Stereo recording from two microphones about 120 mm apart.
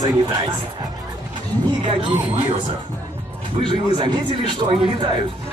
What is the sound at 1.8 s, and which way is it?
Speech, 45° right (ahead or behind).